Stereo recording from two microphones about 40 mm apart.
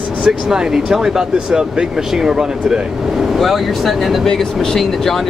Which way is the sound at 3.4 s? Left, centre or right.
Centre.